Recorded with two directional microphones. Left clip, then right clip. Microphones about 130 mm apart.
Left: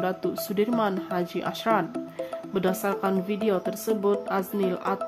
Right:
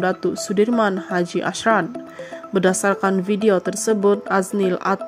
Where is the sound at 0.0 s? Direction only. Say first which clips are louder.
Right 7 dB; 35° right (ahead or behind).